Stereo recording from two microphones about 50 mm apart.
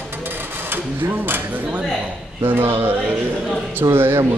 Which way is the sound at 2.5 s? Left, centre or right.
Right.